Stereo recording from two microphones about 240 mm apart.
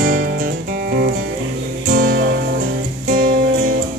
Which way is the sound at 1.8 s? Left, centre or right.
Right.